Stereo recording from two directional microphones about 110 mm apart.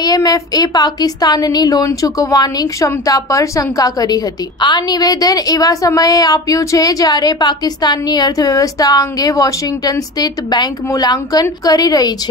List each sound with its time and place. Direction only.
0.0 s speech: 35° left (ahead or behind)